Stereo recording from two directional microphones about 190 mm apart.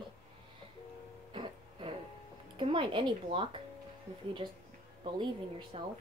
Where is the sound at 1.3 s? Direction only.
25° right (ahead or behind).